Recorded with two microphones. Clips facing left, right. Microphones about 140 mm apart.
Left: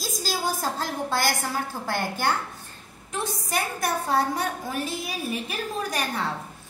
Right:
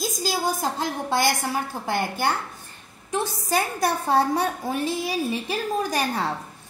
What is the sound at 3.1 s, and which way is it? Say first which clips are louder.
A woman's voice: right 5 dB; 30° right (ahead or behind).